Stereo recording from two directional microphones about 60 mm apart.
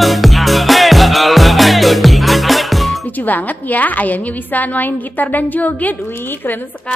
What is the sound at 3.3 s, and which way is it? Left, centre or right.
A woman's voice, left.